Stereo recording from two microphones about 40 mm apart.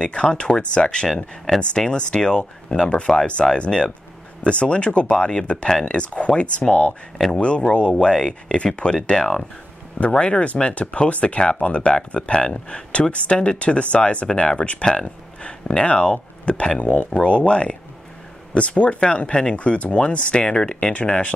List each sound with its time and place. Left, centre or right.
0.0 s speech: left
1.1 s speech: centre
1.8 s speech: left
6.9 s speech: centre
7.3 s speech: left
10.1 s speech: left
16.8 s speech: left
17.2 s speech: left
19.5 s speech: left